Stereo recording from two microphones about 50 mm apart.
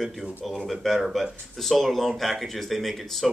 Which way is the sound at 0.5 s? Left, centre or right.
Centre.